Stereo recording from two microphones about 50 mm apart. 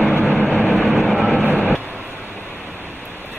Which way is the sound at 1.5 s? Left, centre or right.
Left.